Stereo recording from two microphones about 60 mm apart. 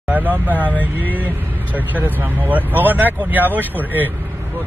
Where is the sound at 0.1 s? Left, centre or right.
Right.